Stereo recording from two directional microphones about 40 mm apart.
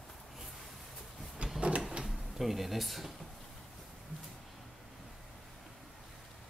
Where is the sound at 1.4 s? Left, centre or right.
Right.